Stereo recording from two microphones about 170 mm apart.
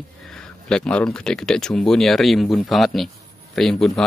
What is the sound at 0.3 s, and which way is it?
Speech, 5° left (ahead or behind).